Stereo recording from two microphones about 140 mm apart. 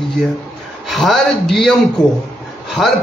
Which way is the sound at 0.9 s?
Centre (ahead or behind).